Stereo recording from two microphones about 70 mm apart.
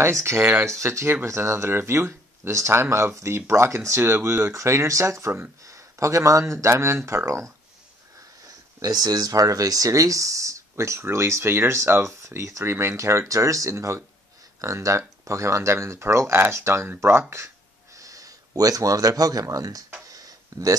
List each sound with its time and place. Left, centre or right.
0.0 s speech: right
8.7 s speech: right
17.9 s speech: right
20.1 s a sound: right